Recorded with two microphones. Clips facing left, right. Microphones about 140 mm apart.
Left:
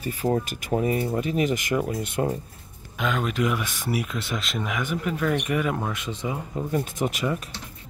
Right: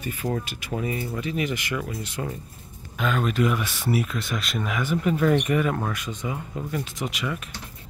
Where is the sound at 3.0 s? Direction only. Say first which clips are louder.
Right 1 dB; 15° left (ahead or behind).